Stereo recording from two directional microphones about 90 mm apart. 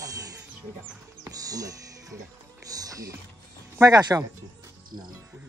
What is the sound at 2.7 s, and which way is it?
Speech, 40° right (ahead or behind).